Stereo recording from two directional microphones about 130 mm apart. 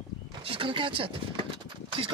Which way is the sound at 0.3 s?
45° right (ahead or behind).